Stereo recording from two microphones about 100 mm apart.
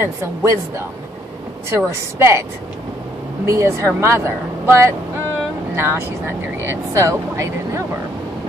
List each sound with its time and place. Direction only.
0.0 s speech: 30° right (ahead or behind)
1.9 s speech: 25° right (ahead or behind)
3.4 s speech: 30° right (ahead or behind)